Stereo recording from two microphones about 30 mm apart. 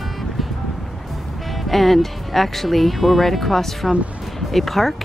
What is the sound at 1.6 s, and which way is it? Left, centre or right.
Speech, centre.